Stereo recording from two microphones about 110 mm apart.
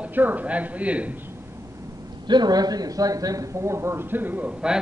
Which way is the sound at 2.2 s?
40° right (ahead or behind).